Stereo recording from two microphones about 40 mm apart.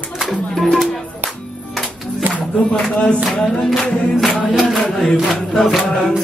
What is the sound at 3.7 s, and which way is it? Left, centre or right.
Music, centre.